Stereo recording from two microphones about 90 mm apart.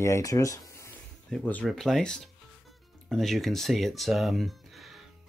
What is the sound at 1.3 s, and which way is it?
Speech, centre (ahead or behind).